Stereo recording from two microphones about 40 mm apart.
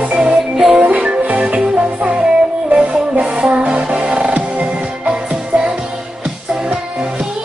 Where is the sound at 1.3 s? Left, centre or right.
Right.